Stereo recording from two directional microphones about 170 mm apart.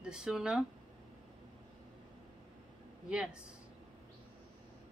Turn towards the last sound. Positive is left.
turn(degrees=-5)  # may be behind; listen again after turning